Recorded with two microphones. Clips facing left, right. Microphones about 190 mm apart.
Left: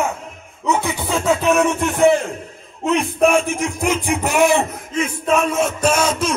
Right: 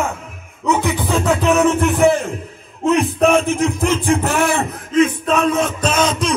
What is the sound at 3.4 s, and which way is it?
A man's voice, 15° left (ahead or behind).